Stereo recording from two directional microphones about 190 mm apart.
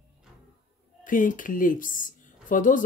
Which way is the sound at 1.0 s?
45° left (ahead or behind).